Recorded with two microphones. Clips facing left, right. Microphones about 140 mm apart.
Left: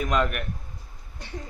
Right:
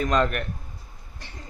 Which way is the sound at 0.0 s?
5° left (ahead or behind).